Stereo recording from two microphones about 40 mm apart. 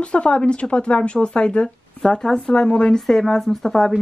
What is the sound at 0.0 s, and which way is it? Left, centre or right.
Speech, left.